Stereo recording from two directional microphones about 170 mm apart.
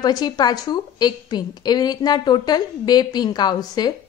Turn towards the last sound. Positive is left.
turn(degrees=25)  # may be behind; listen again after turning